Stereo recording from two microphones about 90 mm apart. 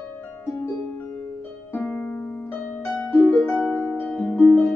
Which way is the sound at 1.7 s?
10° left (ahead or behind).